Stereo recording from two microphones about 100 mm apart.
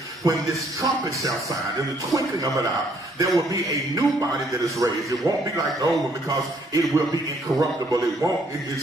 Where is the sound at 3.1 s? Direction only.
35° right (ahead or behind).